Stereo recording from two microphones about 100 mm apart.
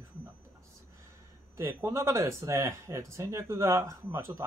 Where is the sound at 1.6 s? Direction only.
25° right (ahead or behind).